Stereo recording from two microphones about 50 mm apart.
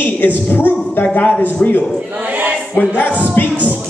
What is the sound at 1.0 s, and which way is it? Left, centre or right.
Speech, left.